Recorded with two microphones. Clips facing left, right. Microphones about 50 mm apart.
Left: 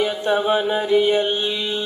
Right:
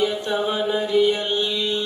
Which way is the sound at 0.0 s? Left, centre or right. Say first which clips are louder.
Left 2 dB; left.